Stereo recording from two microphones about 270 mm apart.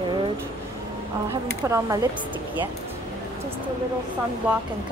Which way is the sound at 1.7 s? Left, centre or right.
Centre.